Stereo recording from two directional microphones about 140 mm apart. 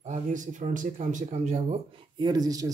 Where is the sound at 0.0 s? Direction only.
60° right (ahead or behind).